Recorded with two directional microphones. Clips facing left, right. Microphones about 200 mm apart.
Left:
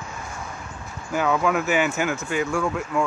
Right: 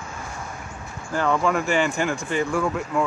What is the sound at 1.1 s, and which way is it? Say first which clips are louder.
Speech: even; 5° left (ahead or behind).